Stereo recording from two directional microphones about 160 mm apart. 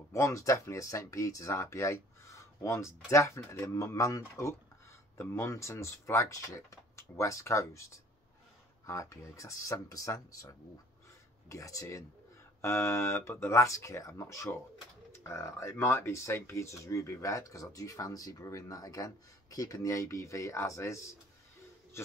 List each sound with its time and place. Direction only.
0.1 s speech: 20° left (ahead or behind)